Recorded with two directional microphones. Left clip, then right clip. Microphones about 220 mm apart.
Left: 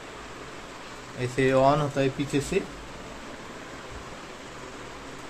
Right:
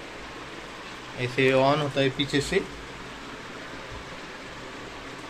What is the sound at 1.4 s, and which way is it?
Speech, 25° left (ahead or behind).